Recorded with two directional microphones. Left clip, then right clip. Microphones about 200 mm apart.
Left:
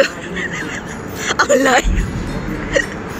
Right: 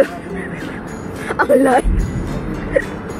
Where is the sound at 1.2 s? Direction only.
40° right (ahead or behind).